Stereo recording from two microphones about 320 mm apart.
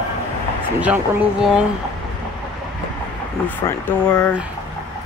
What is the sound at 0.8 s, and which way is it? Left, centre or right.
Speech, centre.